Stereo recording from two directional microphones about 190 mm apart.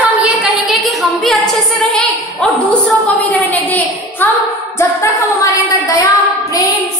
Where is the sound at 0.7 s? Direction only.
Centre (ahead or behind).